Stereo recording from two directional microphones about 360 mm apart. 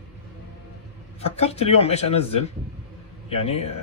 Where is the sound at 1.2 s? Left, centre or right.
Centre.